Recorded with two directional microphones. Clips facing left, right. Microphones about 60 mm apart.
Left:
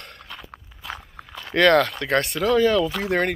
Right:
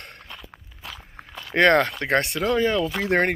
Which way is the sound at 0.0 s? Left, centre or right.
Right.